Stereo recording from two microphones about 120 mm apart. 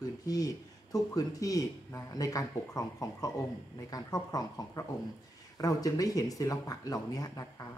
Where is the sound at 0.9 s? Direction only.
30° left (ahead or behind).